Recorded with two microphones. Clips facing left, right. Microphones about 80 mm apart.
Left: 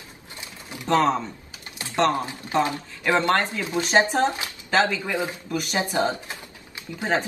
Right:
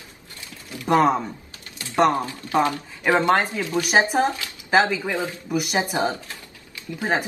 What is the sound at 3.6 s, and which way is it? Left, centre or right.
Speech, left.